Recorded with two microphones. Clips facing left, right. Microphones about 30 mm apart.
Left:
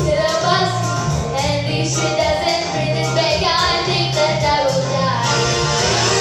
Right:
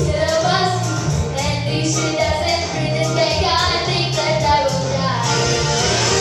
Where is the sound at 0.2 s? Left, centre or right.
Centre.